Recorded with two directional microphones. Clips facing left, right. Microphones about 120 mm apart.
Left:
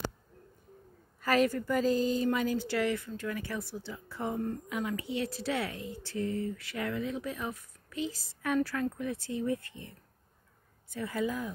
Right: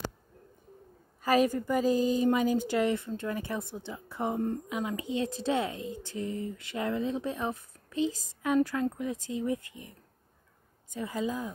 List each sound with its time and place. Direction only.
1.2 s speech: 15° right (ahead or behind)